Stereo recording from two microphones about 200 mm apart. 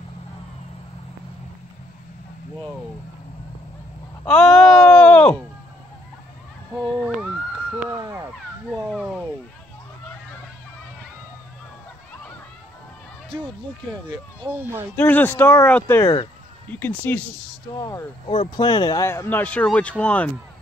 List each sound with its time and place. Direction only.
4.3 s wail: 5° left (ahead or behind)
8.0 s crow: 15° right (ahead or behind)
8.9 s a sound: centre (ahead or behind)
14.1 s speech: 15° right (ahead or behind)
15.0 s speech: 10° left (ahead or behind)
16.6 s speech: 10° left (ahead or behind)
17.7 s speech: 20° left (ahead or behind)